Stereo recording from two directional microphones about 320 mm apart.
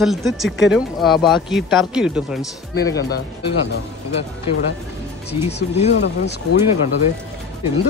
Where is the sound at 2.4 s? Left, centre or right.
Centre.